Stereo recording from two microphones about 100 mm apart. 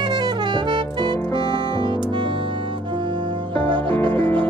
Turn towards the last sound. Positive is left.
turn(degrees=-55)  # may be behind; listen again after turning